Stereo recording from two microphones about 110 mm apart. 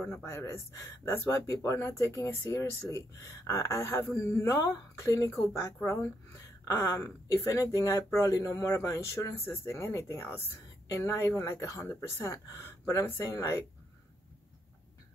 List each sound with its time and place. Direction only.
0.0 s speech: 20° left (ahead or behind)